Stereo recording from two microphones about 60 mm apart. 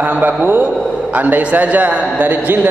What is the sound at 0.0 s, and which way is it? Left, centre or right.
A man's voice, right.